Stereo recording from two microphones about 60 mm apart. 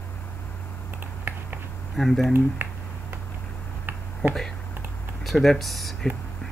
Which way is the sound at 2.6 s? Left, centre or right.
Right.